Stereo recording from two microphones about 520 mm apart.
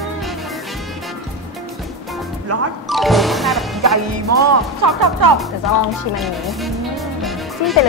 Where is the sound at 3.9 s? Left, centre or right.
Right.